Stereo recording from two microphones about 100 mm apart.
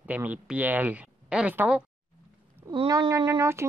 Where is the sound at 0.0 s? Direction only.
15° right (ahead or behind).